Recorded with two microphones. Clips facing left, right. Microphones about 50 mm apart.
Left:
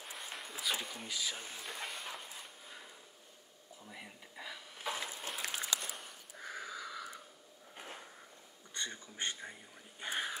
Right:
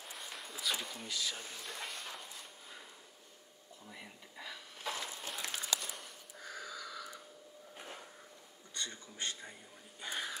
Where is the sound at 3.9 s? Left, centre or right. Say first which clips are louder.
Left 1 dB; centre; by 7.1 s left.